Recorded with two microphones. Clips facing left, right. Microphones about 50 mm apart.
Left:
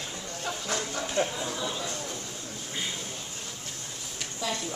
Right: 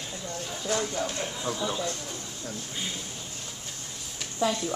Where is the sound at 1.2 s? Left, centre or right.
Left.